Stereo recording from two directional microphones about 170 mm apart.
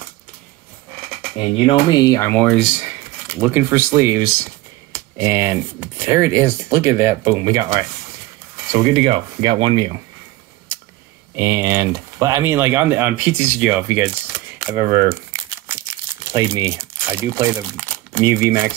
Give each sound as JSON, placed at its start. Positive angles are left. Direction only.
{"t": 1.7, "sound": "speech", "side_deg": 25}
{"t": 2.4, "sound": "speech", "side_deg": -5}
{"t": 8.7, "sound": "speech", "side_deg": -35}
{"t": 11.3, "sound": "speech", "side_deg": -10}
{"t": 16.3, "sound": "speech", "side_deg": -20}